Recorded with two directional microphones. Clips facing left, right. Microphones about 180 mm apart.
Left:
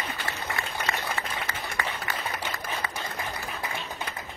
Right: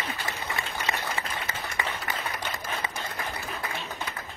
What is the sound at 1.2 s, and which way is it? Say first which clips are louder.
Applause: even; 15° right (ahead or behind).